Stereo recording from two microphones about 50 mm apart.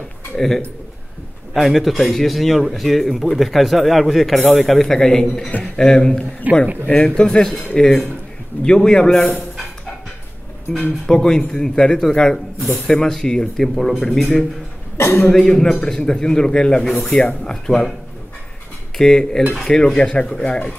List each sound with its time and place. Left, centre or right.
1.5 s a man's voice: centre
6.5 s a man's voice: right
6.9 s speech: centre
11.1 s speech: centre
15.0 s a man's voice: left
15.3 s speech: centre
18.9 s speech: centre